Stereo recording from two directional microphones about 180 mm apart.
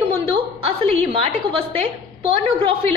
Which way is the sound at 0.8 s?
30° right (ahead or behind).